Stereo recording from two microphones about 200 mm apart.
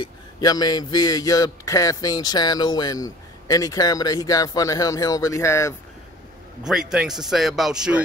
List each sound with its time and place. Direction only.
0.0 s a man's voice: 20° left (ahead or behind)
6.6 s speech: 5° right (ahead or behind)